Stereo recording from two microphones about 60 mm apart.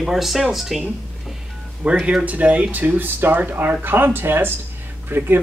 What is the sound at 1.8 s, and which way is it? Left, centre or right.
Speech, centre.